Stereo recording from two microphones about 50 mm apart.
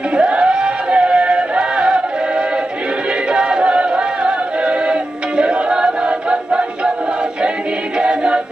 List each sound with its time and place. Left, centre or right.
0.1 s music: centre
8.0 s a capella: centre